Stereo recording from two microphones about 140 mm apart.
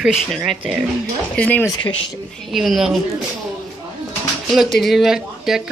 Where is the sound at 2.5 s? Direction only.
Centre (ahead or behind).